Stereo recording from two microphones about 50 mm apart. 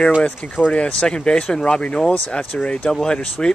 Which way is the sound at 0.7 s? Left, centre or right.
Centre.